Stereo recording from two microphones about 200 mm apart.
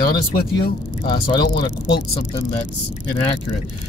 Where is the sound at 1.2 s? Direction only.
20° left (ahead or behind).